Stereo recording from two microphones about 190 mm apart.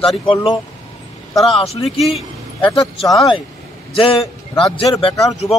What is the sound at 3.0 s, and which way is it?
Speech, centre (ahead or behind).